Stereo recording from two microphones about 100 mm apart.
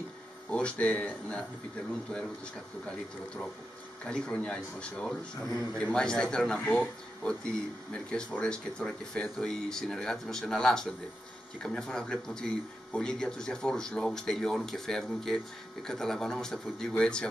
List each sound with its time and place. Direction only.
0.5 s speech: 10° left (ahead or behind)
4.0 s speech: 10° left (ahead or behind)
7.9 s speech: 10° left (ahead or behind)